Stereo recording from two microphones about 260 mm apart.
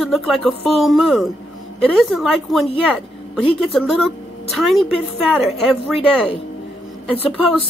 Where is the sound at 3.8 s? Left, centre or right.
Centre.